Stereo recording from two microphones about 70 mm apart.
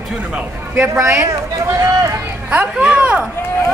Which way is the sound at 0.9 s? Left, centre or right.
Right.